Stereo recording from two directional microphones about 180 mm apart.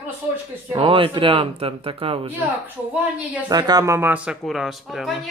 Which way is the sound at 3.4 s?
20° right (ahead or behind).